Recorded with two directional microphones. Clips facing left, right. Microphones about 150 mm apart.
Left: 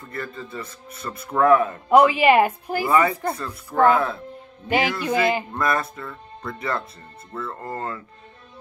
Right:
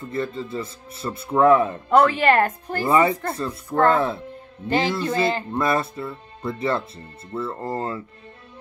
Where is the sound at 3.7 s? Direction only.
5° left (ahead or behind).